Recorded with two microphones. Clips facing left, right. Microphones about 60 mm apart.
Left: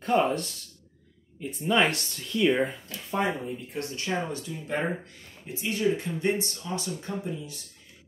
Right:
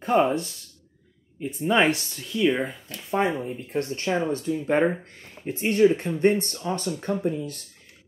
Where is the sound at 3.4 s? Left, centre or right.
Right.